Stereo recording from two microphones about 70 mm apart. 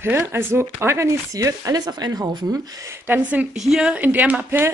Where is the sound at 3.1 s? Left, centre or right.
Right.